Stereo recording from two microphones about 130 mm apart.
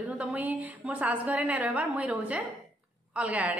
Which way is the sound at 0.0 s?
10° right (ahead or behind).